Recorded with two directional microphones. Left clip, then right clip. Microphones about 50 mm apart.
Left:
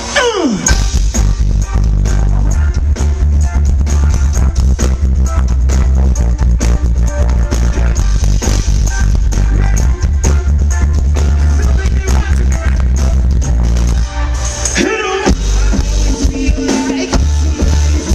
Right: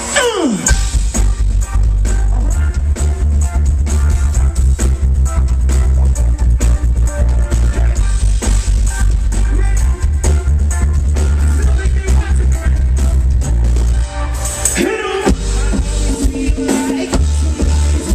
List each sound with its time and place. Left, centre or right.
0.1 s music: left
14.7 s music: left
16.6 s music: left